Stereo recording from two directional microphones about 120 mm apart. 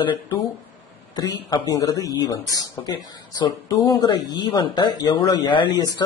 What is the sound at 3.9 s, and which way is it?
Speech, 35° left (ahead or behind).